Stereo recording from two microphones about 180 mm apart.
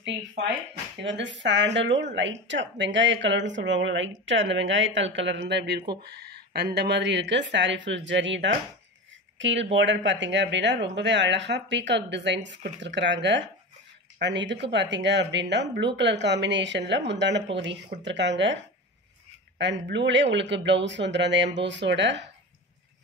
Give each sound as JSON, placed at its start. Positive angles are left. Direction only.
{"t": 1.0, "sound": "speech", "side_deg": -85}
{"t": 19.6, "sound": "speech", "side_deg": -80}